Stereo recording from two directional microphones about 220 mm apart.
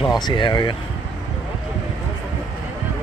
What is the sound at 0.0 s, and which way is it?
Speech, 20° left (ahead or behind).